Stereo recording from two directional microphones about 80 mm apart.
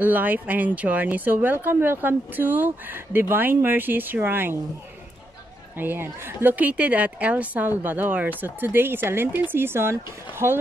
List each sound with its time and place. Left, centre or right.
0.0 s speech: right
5.8 s speech: right